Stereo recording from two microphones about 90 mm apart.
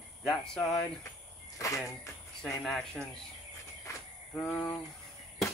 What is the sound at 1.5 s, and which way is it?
Speech, 40° left (ahead or behind).